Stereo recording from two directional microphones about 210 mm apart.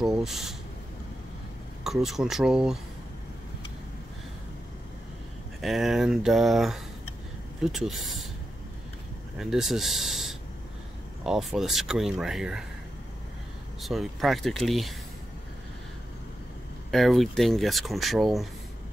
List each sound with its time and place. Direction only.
0.0 s speech: centre (ahead or behind)
1.9 s speech: centre (ahead or behind)
5.6 s speech: centre (ahead or behind)
9.4 s speech: centre (ahead or behind)
13.8 s speech: centre (ahead or behind)
16.9 s speech: centre (ahead or behind)